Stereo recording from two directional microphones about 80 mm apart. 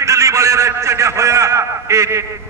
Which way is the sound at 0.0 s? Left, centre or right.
Right.